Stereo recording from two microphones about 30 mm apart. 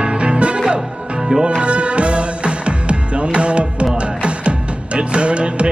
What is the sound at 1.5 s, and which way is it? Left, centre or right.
Music, right.